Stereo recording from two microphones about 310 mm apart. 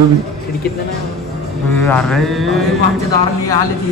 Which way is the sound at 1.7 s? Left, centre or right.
Centre.